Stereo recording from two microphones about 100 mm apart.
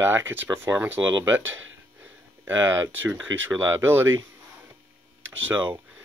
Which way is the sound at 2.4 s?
25° right (ahead or behind).